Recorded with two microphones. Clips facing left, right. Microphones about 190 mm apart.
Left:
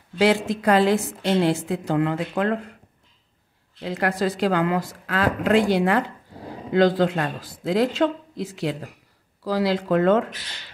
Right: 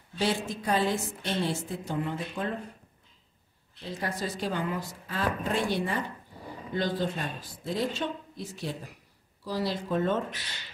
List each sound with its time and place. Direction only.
0.2 s a woman's voice: 90° left
3.8 s a woman's voice: 90° left